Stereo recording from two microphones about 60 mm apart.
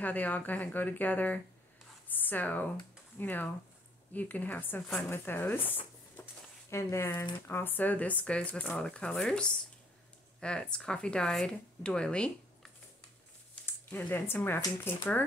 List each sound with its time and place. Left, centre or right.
0.0 s speech: left
6.7 s speech: left
7.4 s speech: left; by 12.3 s centre
13.7 s speech: left